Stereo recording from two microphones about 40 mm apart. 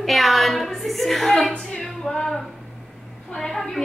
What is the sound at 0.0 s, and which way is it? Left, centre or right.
A woman's voice, centre.